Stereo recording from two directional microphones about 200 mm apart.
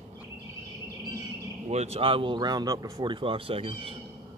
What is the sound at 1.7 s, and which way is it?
Speech, 30° right (ahead or behind).